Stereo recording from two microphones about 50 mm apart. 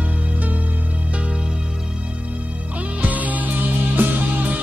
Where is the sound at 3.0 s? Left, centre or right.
Right.